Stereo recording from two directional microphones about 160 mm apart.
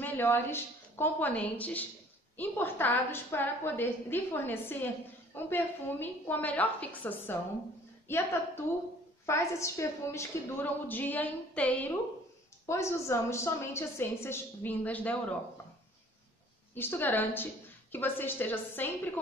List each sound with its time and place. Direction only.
0.0 s a woman's voice: 15° left (ahead or behind)
16.7 s a woman's voice: 15° left (ahead or behind)